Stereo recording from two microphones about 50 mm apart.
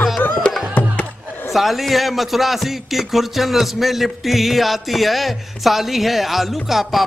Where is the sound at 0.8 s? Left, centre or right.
Left.